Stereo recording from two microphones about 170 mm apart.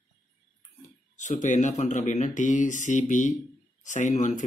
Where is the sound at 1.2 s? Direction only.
45° left (ahead or behind).